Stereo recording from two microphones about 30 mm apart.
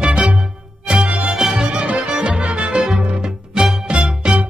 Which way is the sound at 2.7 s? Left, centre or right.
Right.